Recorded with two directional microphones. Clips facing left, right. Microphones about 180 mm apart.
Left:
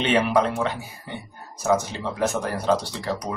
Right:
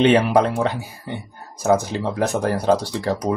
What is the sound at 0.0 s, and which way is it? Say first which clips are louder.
Speech: right 5 dB; 35° right (ahead or behind).